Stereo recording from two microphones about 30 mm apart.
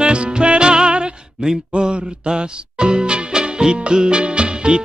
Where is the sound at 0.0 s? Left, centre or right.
Right.